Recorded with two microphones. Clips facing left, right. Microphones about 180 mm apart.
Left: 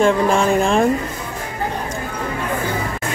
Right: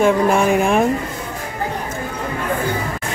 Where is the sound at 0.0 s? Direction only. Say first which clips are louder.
Right 1 dB; 10° right (ahead or behind).